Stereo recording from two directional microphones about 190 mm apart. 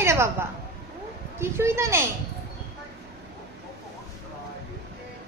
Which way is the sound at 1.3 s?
15° right (ahead or behind).